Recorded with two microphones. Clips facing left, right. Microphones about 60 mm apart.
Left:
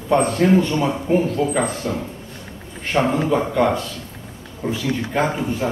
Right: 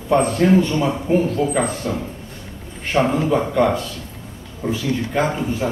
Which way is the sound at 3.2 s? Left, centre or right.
Centre.